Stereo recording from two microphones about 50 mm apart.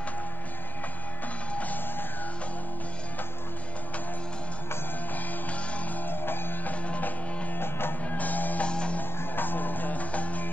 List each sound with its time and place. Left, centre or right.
1.5 s music: left
5.1 s music: left
6.0 s music: left
6.7 s music: left
7.5 s music: left
8.0 s music: left
8.6 s music: left
9.2 s music: left